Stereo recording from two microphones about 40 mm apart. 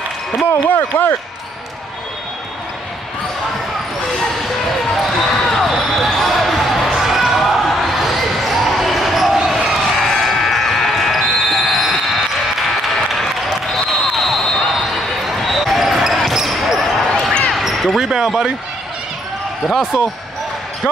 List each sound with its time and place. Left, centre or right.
0.7 s speech: left
4.9 s basketball bounce: centre
9.8 s a sound: centre
10.2 s basketball bounce: centre
17.9 s speech: centre